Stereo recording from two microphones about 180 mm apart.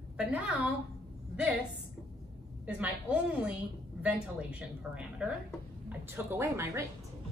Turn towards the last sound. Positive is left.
turn(degrees=-15)  # may be behind; listen again after turning